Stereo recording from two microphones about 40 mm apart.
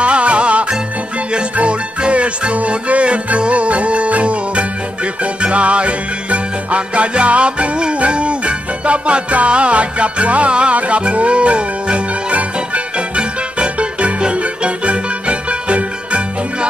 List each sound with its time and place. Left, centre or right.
0.0 s music: right